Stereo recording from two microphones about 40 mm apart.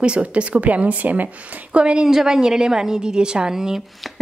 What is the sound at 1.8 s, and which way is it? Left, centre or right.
Speech, right.